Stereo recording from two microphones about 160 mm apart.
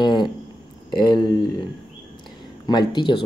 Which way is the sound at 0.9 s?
25° left (ahead or behind).